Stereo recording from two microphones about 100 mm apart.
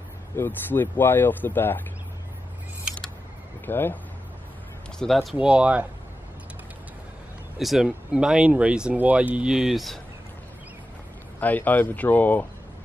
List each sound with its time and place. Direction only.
0.4 s speech: 20° left (ahead or behind)
3.6 s speech: 20° left (ahead or behind)
4.9 s speech: 5° left (ahead or behind)
5.4 s speech: 10° right (ahead or behind)
7.5 s speech: 5° right (ahead or behind)
11.3 s speech: 15° left (ahead or behind)